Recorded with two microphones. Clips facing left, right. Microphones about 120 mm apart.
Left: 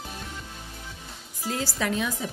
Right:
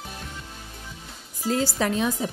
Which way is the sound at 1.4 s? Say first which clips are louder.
Right 5 dB; 30° right (ahead or behind).